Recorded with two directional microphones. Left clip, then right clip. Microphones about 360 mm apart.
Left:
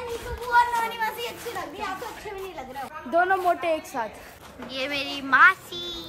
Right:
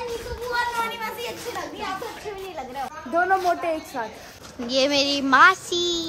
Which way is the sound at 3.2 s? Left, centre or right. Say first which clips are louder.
Right 1 dB; left.